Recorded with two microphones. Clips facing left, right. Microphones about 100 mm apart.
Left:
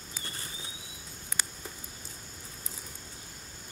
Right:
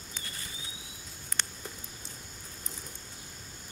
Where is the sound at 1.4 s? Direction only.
5° left (ahead or behind).